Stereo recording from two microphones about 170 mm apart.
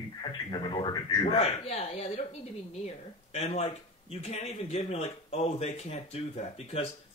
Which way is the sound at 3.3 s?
35° left (ahead or behind).